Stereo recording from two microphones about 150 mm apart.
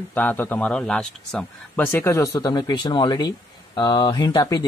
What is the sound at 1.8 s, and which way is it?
Speech, 15° left (ahead or behind).